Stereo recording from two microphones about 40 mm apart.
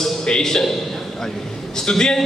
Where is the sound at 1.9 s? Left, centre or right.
Centre.